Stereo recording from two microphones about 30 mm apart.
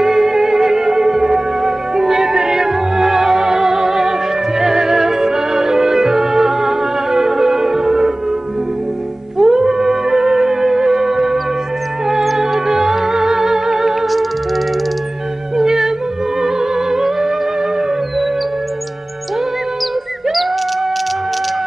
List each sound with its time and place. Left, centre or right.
0.0 s music: centre
9.4 s music: centre
14.0 s music: centre
15.5 s music: centre